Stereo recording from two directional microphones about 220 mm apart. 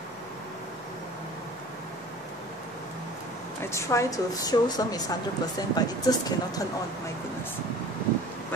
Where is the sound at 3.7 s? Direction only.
15° left (ahead or behind).